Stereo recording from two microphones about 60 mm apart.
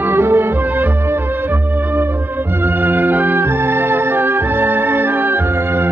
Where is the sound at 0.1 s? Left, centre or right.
Right.